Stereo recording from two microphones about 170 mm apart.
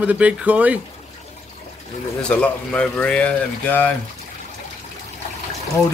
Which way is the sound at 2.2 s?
5° left (ahead or behind).